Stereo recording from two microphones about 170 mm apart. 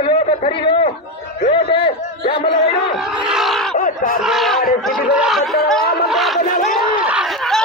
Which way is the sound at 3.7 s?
55° left (ahead or behind).